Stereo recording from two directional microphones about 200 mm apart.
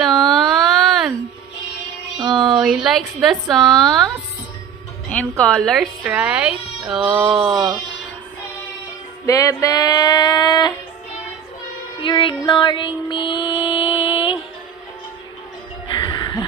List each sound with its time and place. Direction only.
0.0 s a sound: centre (ahead or behind)
2.2 s a sound: centre (ahead or behind)
2.6 s a woman's voice: centre (ahead or behind)
5.4 s a woman's voice: centre (ahead or behind)
9.2 s music: 15° left (ahead or behind)
12.0 s music: 25° left (ahead or behind)
15.9 s music: 20° left (ahead or behind)